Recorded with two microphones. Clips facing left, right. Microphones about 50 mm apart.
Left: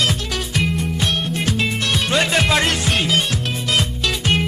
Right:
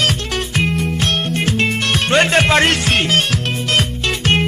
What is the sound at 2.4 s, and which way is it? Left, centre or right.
Music, right.